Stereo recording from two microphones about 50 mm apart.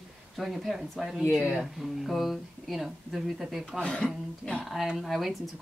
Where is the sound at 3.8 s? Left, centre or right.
Centre.